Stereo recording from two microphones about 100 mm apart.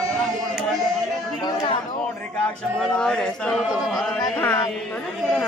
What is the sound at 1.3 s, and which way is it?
Speech, 40° left (ahead or behind).